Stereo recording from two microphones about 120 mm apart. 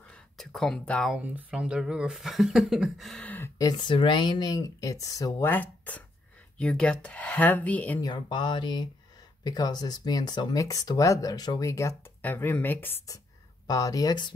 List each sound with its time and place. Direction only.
0.1 s a sound: 5° left (ahead or behind)
1.1 s speech: 10° right (ahead or behind)
3.3 s speech: 15° left (ahead or behind)
3.5 s speech: 35° left (ahead or behind)
5.5 s speech: 15° left (ahead or behind)
8.0 s speech: 40° left (ahead or behind); by 13.0 s 15° left (ahead or behind)
13.7 s speech: 30° left (ahead or behind)